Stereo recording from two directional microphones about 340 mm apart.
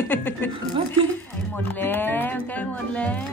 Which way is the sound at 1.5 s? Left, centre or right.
Centre.